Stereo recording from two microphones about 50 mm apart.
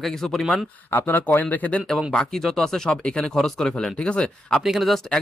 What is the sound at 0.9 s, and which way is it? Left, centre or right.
Speech, left.